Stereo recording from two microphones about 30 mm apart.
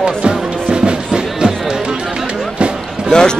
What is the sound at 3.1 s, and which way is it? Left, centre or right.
Boat, left.